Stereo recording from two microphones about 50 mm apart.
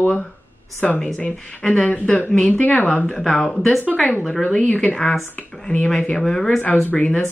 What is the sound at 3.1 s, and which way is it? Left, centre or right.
Speech, centre.